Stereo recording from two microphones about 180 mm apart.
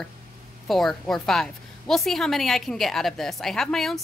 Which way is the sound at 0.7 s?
Centre (ahead or behind).